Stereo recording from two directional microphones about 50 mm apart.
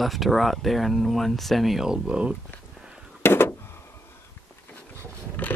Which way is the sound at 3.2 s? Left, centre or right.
Left.